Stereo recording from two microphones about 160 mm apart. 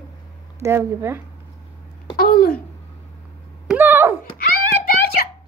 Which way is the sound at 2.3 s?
65° left (ahead or behind).